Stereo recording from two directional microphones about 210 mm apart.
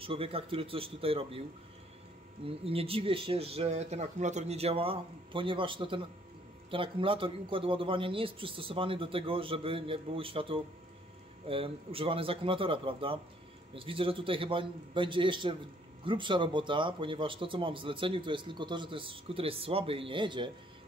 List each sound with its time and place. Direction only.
0.0 s speech: 25° right (ahead or behind)
2.4 s speech: 25° right (ahead or behind)